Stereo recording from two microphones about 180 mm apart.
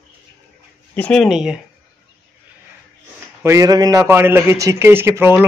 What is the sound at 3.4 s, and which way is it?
A man's voice, 20° right (ahead or behind).